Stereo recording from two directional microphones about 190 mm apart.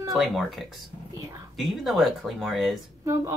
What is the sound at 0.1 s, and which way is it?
Speech, centre (ahead or behind).